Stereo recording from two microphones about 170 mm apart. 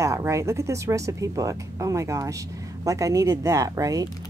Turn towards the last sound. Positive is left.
turn(degrees=-20)  # may be behind; listen again after turning